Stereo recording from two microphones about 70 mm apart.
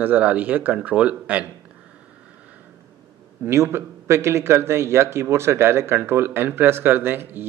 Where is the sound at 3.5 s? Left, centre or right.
Right.